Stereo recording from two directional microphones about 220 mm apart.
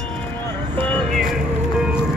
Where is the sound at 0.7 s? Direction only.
5° left (ahead or behind).